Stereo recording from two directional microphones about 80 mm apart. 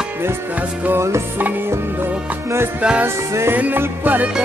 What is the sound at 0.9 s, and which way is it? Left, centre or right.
Music, right.